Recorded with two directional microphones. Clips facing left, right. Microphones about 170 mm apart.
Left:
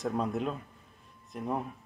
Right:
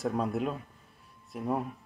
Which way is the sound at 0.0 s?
5° right (ahead or behind).